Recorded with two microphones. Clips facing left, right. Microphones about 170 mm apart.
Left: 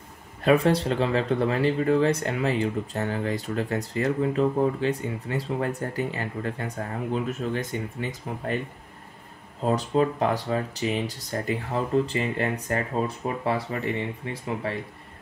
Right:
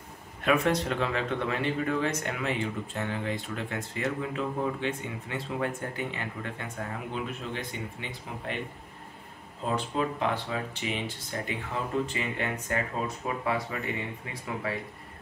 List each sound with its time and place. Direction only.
0.4 s speech: 35° left (ahead or behind)
9.7 s speech: 40° left (ahead or behind)